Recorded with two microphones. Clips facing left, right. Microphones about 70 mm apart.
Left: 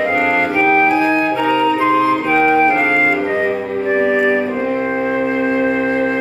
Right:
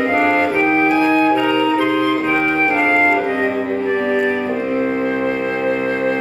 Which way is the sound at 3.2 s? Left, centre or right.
Centre.